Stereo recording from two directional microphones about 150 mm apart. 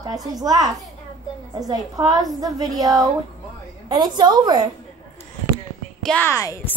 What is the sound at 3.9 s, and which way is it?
Speech, 30° right (ahead or behind).